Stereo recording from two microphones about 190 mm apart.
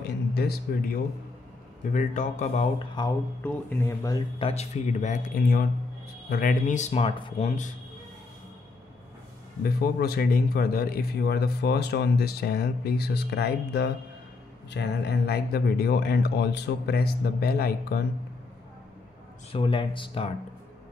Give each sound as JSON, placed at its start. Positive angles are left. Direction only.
{"t": 0.3, "sound": "speech", "side_deg": 55}
{"t": 1.9, "sound": "speech", "side_deg": 40}
{"t": 3.0, "sound": "speech", "side_deg": 20}
{"t": 4.4, "sound": "speech", "side_deg": 35}
{"t": 7.4, "sound": "speech", "side_deg": 40}
{"t": 9.6, "sound": "a man's voice", "side_deg": 55}
{"t": 19.5, "sound": "speech", "side_deg": 25}